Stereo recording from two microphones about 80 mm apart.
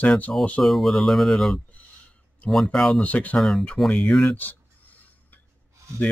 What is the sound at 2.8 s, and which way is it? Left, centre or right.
Speech, centre.